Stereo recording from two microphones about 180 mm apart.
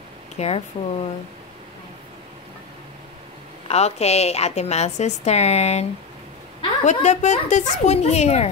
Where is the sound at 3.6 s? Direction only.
35° left (ahead or behind).